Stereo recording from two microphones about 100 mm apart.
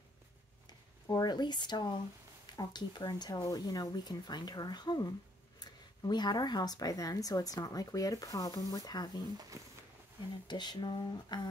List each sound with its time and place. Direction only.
0.7 s speech: 45° left (ahead or behind)
10.5 s speech: 45° left (ahead or behind)